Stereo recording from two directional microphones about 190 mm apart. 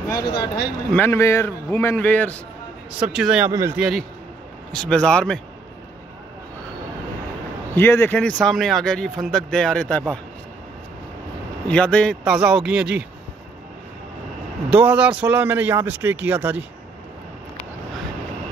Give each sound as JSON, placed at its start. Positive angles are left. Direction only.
{"t": 0.1, "sound": "a man's voice", "side_deg": 20}
{"t": 2.9, "sound": "speech", "side_deg": -5}
{"t": 4.7, "sound": "speech", "side_deg": 5}
{"t": 7.7, "sound": "speech", "side_deg": 10}
{"t": 11.6, "sound": "speech", "side_deg": 5}
{"t": 14.7, "sound": "speech", "side_deg": -5}